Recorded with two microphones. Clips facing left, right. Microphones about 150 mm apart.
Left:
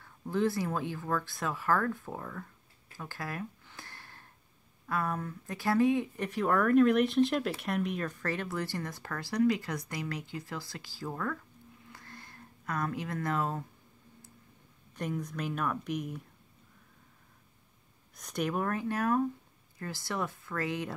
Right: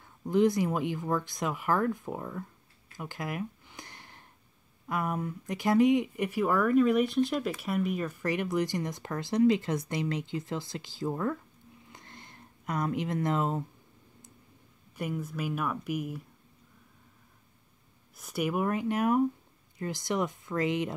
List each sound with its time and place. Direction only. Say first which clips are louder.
0.0 s speech: right 5 dB; 15° right (ahead or behind)
3.0 s a sound: right 3 dB; 15° right (ahead or behind)
4.8 s speech: right 2 dB; 15° right (ahead or behind)
11.9 s a sound: even; 20° right (ahead or behind)
15.0 s speech: right 1 dB; 5° right (ahead or behind)
18.1 s speech: right 2 dB; 5° right (ahead or behind)